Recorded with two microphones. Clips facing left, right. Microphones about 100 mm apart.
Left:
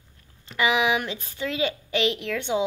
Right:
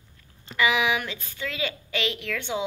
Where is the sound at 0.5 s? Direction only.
35° left (ahead or behind).